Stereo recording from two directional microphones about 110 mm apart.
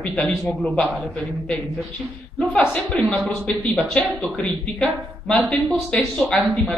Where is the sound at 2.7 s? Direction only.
5° left (ahead or behind).